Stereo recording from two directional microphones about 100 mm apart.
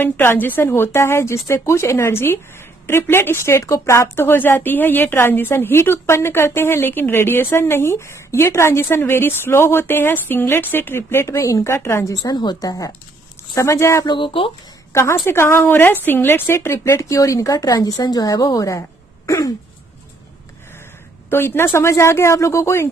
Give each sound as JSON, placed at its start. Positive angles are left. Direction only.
{"t": 0.0, "sound": "speech", "side_deg": 20}
{"t": 13.6, "sound": "speech", "side_deg": 25}
{"t": 14.0, "sound": "speech", "side_deg": 55}
{"t": 14.9, "sound": "a woman's voice", "side_deg": 30}
{"t": 21.3, "sound": "speech", "side_deg": 25}